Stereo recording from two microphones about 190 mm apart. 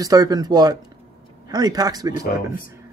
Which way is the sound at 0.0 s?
20° right (ahead or behind).